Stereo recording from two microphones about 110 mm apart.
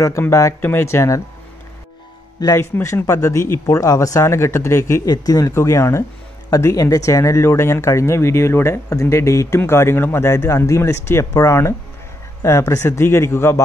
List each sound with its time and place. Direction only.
0.0 s speech: 30° left (ahead or behind)
2.5 s speech: 25° left (ahead or behind)